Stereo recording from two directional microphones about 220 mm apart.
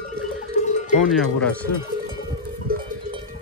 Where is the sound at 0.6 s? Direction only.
35° left (ahead or behind).